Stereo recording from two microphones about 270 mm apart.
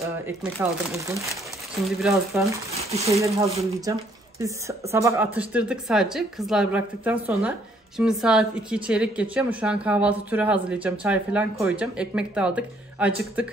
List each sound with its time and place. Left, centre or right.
0.9 s speech: centre
1.9 s speech: centre
2.7 s speech: right
4.4 s speech: centre